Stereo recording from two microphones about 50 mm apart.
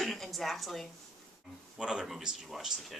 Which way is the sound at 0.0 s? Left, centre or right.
Centre.